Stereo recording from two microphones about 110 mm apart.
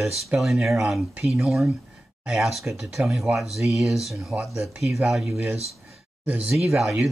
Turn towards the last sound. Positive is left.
turn(degrees=-5)  # may be behind; listen again after turning